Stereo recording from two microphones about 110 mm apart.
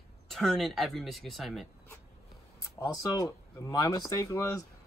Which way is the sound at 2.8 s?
30° left (ahead or behind).